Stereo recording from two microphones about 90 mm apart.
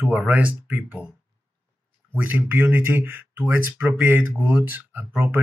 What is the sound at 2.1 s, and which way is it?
Speech, 20° right (ahead or behind).